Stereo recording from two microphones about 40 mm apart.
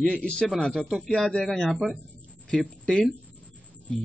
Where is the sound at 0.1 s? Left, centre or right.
Left.